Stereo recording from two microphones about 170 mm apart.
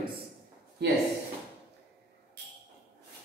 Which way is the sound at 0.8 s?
75° right (ahead or behind).